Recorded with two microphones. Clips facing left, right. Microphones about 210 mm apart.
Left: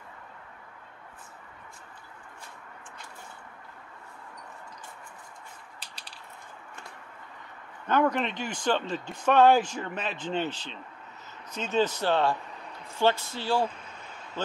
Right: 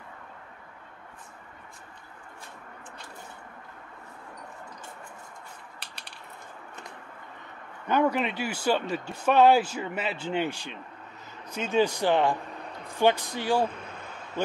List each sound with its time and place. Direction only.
5.8 s mechanisms: 60° right (ahead or behind)
7.9 s speech: 10° right (ahead or behind)